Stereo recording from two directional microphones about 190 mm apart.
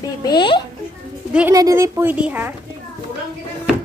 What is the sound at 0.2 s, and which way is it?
Speech, 25° left (ahead or behind).